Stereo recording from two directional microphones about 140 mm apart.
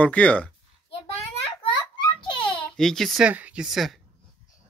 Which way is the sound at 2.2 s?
35° left (ahead or behind).